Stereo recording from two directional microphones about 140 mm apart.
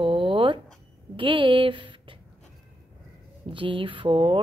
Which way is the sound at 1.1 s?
40° right (ahead or behind).